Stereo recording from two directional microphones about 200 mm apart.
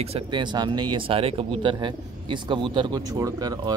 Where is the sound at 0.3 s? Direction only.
20° right (ahead or behind).